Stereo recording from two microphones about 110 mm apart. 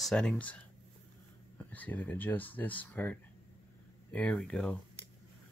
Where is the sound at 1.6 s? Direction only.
15° left (ahead or behind).